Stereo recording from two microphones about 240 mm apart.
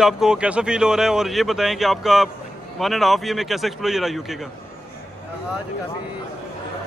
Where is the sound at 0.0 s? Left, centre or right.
Centre.